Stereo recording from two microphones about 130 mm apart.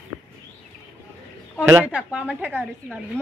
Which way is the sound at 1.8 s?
10° right (ahead or behind).